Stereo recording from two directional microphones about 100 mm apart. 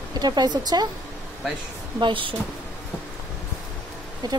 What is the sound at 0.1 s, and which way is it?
Speech, 45° right (ahead or behind).